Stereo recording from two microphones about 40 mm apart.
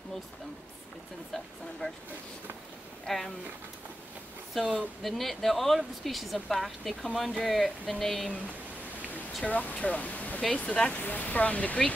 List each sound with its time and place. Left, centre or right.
3.1 s speech: centre
4.7 s speech: centre
7.8 s a sound: centre
9.5 s speech: left
10.5 s speech: left
11.0 s speech: left